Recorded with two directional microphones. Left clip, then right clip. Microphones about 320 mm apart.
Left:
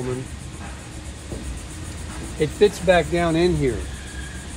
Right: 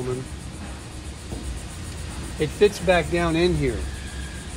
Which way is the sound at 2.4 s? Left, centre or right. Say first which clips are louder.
Left 2 dB; centre.